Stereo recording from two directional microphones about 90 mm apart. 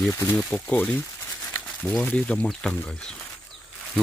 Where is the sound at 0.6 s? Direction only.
15° left (ahead or behind).